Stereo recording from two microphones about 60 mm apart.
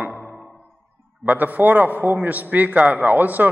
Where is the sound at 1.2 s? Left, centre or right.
Right.